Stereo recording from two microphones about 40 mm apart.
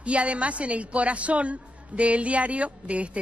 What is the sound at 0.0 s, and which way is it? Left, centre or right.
A woman's voice, right.